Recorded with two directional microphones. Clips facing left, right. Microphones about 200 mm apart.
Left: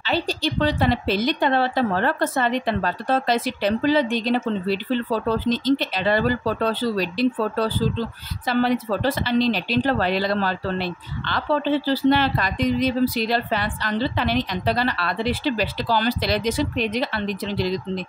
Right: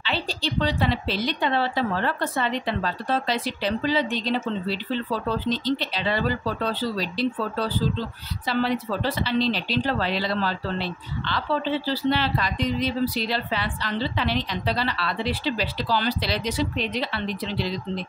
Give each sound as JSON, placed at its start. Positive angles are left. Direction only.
{"t": 0.0, "sound": "a woman's voice", "side_deg": 45}